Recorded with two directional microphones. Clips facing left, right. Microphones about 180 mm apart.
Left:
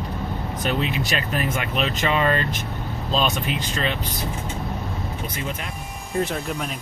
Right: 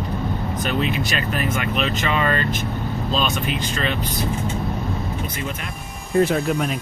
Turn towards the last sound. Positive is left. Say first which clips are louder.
# right 7 dB
turn(degrees=-5)  # may be behind; listen again after turning